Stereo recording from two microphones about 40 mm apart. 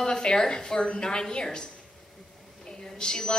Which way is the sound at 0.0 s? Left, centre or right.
Centre.